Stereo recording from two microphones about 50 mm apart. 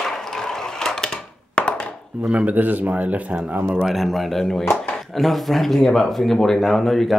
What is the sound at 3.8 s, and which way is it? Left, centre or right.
Speech, centre.